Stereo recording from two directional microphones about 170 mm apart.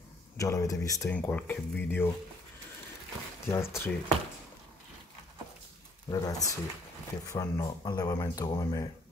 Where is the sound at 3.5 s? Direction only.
15° left (ahead or behind).